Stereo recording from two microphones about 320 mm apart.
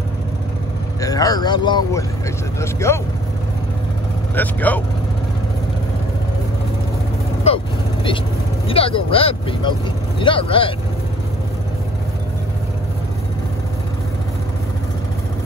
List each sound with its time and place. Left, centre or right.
1.0 s speech: centre
4.4 s speech: centre
7.4 s speech: centre